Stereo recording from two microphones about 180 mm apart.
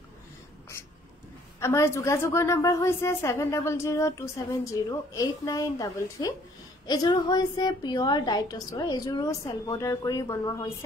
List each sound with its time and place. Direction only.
1.6 s a woman's voice: 15° left (ahead or behind)